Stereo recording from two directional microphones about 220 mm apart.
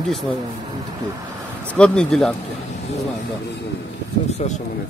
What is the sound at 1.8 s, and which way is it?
Speech, 5° left (ahead or behind).